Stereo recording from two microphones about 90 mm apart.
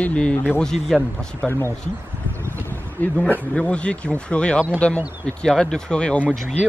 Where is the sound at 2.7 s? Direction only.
20° left (ahead or behind).